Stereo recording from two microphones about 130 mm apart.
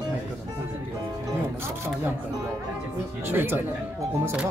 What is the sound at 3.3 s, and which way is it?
Speech, 15° right (ahead or behind).